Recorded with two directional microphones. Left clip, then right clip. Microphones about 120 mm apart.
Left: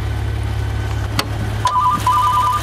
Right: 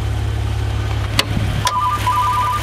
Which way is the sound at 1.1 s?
15° right (ahead or behind).